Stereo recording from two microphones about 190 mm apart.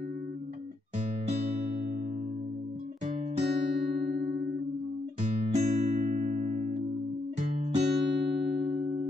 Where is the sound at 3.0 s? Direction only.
40° right (ahead or behind).